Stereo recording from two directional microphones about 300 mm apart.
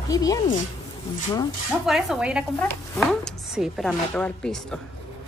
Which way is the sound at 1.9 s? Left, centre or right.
Centre.